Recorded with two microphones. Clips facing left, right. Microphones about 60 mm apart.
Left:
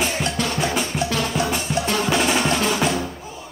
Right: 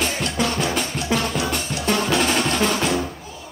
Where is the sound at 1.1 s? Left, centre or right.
Centre.